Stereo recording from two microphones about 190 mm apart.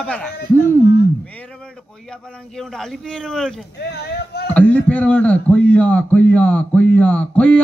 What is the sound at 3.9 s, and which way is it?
Speech, 60° left (ahead or behind).